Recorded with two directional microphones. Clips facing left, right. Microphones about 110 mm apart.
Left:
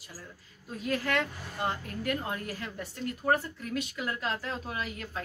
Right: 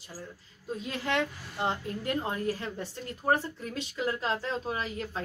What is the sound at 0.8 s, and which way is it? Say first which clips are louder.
A woman's voice: left 1 dB; 20° right (ahead or behind).